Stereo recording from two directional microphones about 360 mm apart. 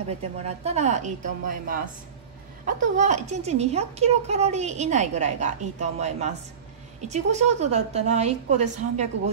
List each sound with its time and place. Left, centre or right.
0.7 s a woman's voice: centre